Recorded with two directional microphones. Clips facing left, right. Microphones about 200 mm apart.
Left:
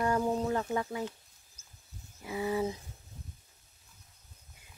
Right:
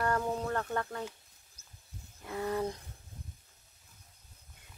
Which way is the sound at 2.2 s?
5° left (ahead or behind).